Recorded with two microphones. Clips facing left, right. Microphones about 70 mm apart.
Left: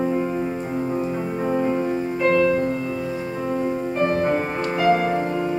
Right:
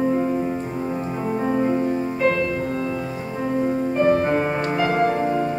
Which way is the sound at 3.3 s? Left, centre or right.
Centre.